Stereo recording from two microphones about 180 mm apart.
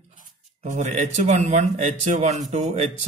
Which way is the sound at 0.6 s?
40° right (ahead or behind).